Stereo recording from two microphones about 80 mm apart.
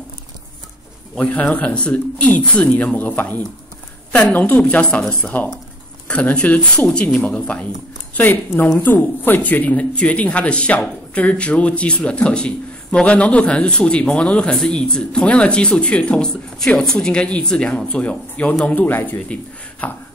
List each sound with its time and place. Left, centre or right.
1.1 s speech: centre